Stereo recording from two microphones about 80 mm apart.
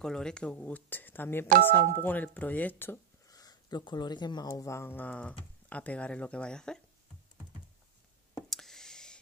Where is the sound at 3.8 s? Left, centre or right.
Left.